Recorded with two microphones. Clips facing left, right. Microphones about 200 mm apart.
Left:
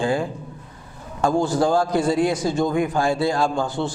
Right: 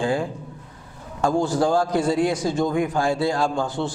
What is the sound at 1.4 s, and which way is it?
A man's voice, 10° left (ahead or behind).